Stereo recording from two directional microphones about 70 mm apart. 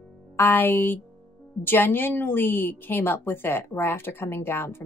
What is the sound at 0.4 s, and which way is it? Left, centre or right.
A woman's voice, left.